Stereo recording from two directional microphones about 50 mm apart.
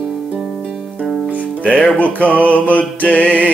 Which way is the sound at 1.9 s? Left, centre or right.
Left.